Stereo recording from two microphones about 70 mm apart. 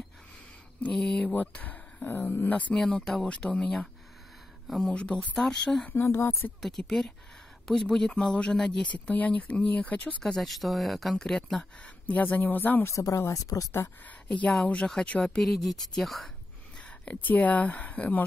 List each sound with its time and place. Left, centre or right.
0.9 s speech: centre
2.8 s speech: centre
3.3 s speech: centre
6.0 s speech: left
6.6 s speech: centre
8.9 s speech: left
10.5 s speech: centre
12.1 s speech: left
12.9 s speech: left
14.6 s speech: centre
17.0 s speech: left